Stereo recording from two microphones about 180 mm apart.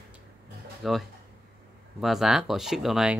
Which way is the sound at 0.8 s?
Centre (ahead or behind).